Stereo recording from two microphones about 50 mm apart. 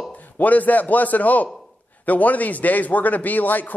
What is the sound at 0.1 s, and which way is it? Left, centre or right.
A man's voice, left.